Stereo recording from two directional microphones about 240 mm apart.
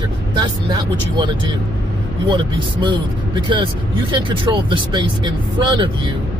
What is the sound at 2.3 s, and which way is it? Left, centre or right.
Speech, centre.